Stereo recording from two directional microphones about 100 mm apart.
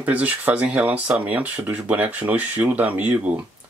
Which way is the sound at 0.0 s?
15° right (ahead or behind).